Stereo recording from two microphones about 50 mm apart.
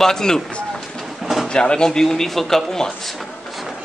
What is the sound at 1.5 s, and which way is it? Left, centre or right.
A man's voice, centre.